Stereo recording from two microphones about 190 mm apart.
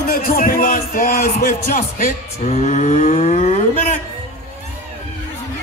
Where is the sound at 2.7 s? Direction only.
40° left (ahead or behind).